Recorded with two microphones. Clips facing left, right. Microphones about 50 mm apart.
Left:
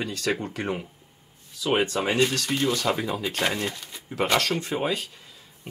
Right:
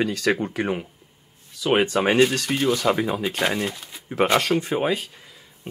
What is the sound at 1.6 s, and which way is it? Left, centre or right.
Speech, right.